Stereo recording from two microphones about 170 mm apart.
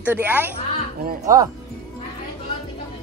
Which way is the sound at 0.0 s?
10° right (ahead or behind).